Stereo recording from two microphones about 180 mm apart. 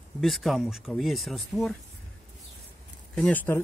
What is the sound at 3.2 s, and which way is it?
Speech, 10° left (ahead or behind).